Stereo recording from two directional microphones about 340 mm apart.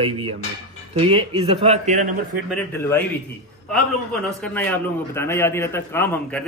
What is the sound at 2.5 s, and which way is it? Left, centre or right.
Speech, centre.